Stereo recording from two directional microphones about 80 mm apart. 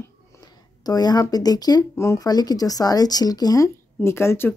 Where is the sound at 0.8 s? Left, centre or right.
Left.